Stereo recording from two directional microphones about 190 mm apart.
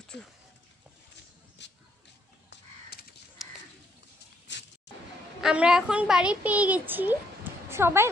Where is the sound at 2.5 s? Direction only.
55° left (ahead or behind).